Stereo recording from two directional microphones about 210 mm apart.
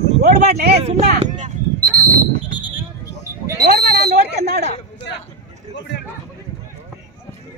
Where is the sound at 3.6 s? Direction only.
45° right (ahead or behind).